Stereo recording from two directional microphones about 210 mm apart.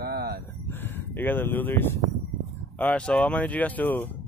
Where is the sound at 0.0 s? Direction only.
45° right (ahead or behind).